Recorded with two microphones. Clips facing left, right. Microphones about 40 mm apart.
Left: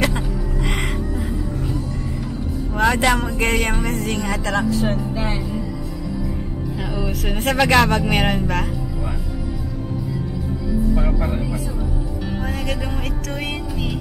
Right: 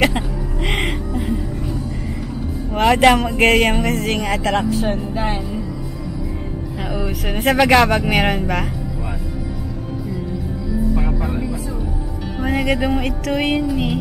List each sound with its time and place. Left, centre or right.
0.0 s vehicle: right
2.8 s speech: right
3.2 s a sound: right
3.8 s speech: right
4.6 s speech: right
6.8 s speech: centre
12.4 s music: right
13.5 s speech: right